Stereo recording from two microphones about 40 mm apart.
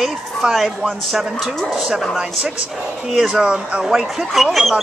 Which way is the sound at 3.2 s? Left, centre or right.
Right.